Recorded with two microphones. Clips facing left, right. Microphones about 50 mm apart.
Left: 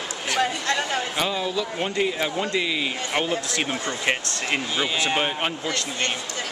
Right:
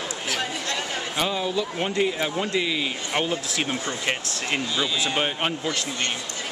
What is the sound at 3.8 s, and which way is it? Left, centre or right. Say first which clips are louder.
Speech: left 2 dB; centre.